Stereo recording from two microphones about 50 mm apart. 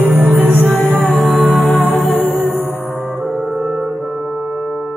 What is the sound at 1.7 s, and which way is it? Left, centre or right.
Music, left.